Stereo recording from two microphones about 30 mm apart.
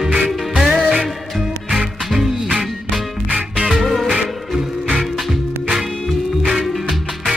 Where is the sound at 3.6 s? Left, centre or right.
Centre.